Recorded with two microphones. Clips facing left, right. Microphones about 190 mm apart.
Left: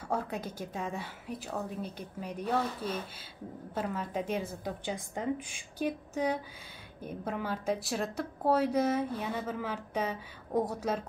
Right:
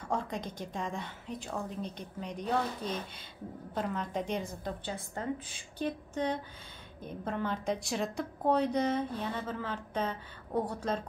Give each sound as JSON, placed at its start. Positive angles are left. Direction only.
{"t": 0.1, "sound": "a woman's voice", "side_deg": 5}